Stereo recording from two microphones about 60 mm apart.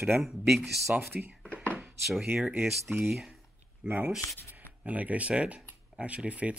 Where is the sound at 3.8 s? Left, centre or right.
Centre.